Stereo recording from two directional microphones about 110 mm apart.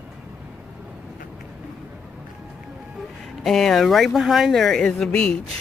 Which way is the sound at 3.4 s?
5° left (ahead or behind).